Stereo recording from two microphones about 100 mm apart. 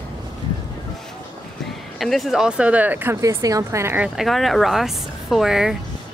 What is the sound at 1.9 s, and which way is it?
Speech, centre (ahead or behind).